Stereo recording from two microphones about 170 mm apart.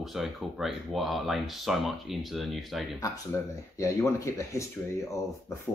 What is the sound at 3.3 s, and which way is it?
Speech, 15° left (ahead or behind).